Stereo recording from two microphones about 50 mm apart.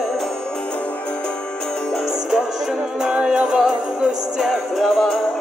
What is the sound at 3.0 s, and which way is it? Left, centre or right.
Music, centre.